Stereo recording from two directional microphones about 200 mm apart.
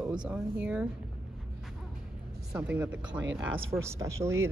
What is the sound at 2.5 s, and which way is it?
Speech, 10° right (ahead or behind).